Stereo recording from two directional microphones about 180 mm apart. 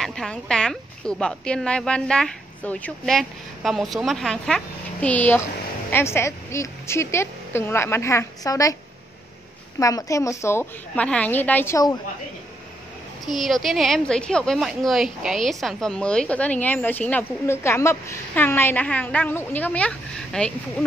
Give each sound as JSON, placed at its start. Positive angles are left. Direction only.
{"t": 0.0, "sound": "a woman's voice", "side_deg": 0}
{"t": 9.8, "sound": "a woman's voice", "side_deg": 20}
{"t": 13.3, "sound": "a woman's voice", "side_deg": 0}